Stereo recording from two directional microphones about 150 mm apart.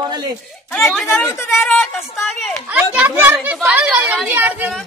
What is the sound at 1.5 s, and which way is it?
A woman's voice, centre (ahead or behind).